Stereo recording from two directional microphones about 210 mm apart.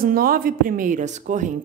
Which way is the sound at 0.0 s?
45° right (ahead or behind).